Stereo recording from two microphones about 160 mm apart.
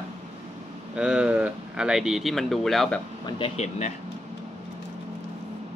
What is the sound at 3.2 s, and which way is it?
Speech, 40° left (ahead or behind).